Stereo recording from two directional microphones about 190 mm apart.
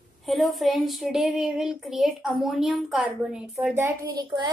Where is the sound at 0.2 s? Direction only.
Centre (ahead or behind).